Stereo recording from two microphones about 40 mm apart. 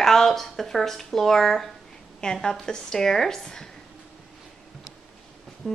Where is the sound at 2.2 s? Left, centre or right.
Left.